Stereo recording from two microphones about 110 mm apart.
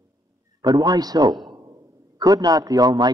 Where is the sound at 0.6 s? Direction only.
40° right (ahead or behind).